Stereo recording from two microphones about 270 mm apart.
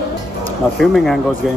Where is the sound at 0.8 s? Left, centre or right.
Centre.